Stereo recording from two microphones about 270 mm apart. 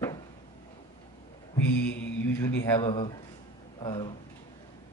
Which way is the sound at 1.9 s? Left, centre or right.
Centre.